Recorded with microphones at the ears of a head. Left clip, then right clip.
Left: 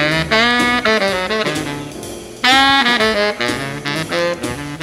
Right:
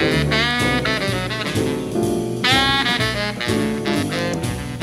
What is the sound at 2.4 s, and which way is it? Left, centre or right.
Saxophone, left.